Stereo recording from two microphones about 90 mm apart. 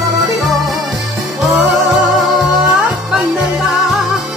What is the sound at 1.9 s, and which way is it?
Music, centre (ahead or behind).